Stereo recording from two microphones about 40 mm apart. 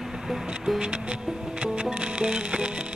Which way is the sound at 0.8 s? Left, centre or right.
Right.